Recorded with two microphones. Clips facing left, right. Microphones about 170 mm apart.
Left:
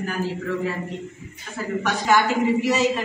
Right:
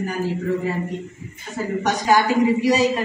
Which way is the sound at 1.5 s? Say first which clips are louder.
Right 3 dB; 40° right (ahead or behind).